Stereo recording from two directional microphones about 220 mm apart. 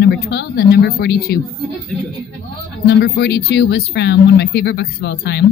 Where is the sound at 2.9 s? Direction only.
50° left (ahead or behind).